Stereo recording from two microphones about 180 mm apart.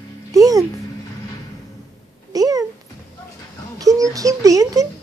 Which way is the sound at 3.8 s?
20° right (ahead or behind).